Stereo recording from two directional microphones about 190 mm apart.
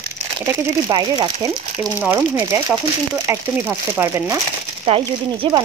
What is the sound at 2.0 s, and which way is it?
Speech, 5° right (ahead or behind).